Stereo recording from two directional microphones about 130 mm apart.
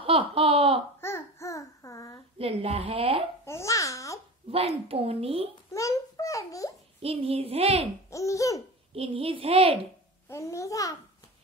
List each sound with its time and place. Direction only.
0.0 s laughter: 45° right (ahead or behind)
1.0 s babbling: 20° left (ahead or behind)
2.3 s speech: 50° right (ahead or behind)
3.4 s babbling: 20° left (ahead or behind)
4.5 s speech: 50° right (ahead or behind)
5.7 s babbling: 25° left (ahead or behind)
7.0 s speech: 50° right (ahead or behind)
8.1 s laughter: 25° left (ahead or behind)
8.9 s speech: 50° right (ahead or behind)
10.2 s babbling: 20° left (ahead or behind)